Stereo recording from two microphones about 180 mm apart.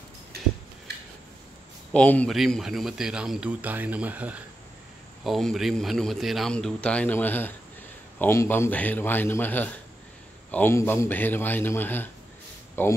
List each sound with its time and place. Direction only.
1.9 s a man's voice: 5° left (ahead or behind)